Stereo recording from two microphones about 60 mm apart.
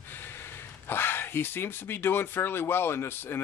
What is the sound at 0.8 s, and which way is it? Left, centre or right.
Speech, left.